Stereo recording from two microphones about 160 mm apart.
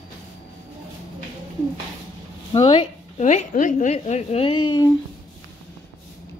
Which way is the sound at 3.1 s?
50° left (ahead or behind).